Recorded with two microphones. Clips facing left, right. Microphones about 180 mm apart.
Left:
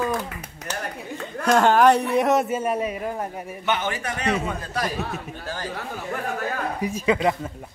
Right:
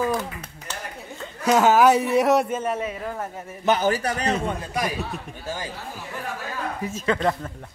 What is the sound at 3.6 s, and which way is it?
Speech, 40° right (ahead or behind).